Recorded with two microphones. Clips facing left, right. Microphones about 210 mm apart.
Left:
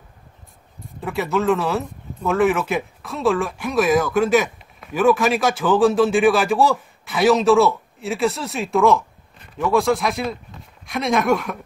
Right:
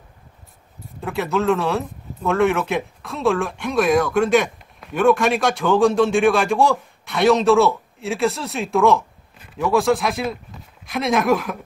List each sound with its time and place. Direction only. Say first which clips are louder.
1.0 s speech: even; centre (ahead or behind)